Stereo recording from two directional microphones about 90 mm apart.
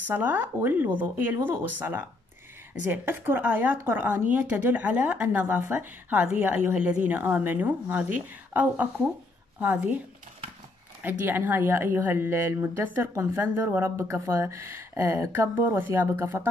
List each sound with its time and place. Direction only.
0.1 s speech: 20° right (ahead or behind)